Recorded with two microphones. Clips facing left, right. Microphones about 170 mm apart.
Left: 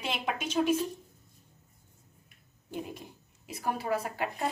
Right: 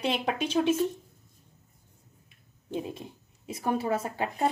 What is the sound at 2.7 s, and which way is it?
Speech, 25° right (ahead or behind).